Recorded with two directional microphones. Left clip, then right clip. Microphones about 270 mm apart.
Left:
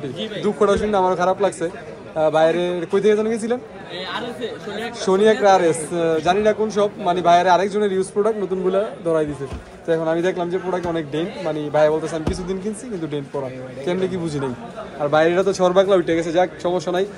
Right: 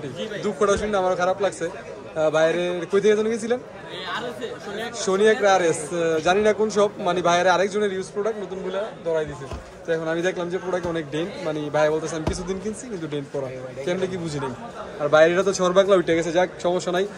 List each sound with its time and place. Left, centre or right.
0.4 s a man's voice: centre
5.0 s a man's voice: centre
9.8 s a man's voice: centre